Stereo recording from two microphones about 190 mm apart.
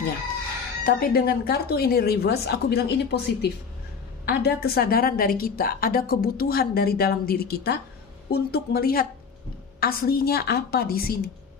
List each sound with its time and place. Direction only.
0.8 s a woman's voice: 50° left (ahead or behind)